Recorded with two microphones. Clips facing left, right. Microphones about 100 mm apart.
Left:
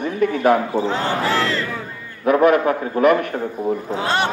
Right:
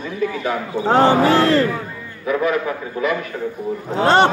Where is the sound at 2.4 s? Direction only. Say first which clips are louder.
Left 7 dB; 55° left (ahead or behind).